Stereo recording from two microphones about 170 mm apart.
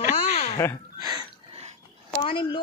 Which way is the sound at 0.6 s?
15° left (ahead or behind).